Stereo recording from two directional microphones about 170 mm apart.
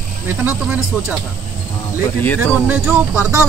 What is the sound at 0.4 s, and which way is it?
Speech, 10° right (ahead or behind).